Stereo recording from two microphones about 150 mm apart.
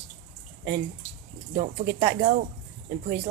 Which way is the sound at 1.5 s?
55° right (ahead or behind).